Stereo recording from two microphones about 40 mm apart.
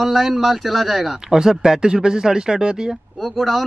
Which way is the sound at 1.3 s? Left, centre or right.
Centre.